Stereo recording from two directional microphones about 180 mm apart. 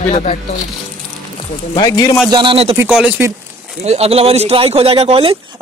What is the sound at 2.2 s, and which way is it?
Speech, 25° right (ahead or behind).